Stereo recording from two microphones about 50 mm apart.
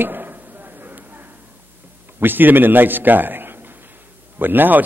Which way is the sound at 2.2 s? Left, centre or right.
Right.